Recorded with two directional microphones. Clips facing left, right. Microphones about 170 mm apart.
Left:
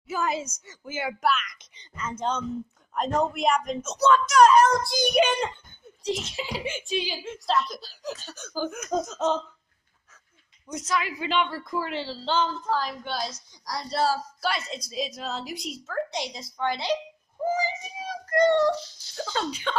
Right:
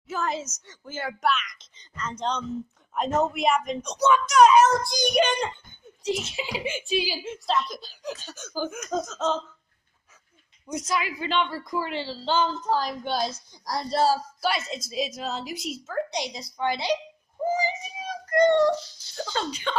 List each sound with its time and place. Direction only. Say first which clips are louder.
0.1 s a woman's voice: left 1 dB; 10° left (ahead or behind)
6.0 s a child's voice: right 1 dB; 5° right (ahead or behind)
8.8 s a woman's voice: left 2 dB; 15° left (ahead or behind)
10.7 s a child's voice: right 1 dB; 10° right (ahead or behind)
11.1 s speech: even; 5° left (ahead or behind)
12.7 s a woman's voice: right 3 dB; 40° right (ahead or behind)
14.4 s speech: right 2 dB; 5° right (ahead or behind)